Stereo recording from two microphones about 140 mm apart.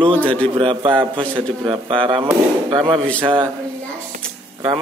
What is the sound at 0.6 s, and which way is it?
Speech, 40° right (ahead or behind).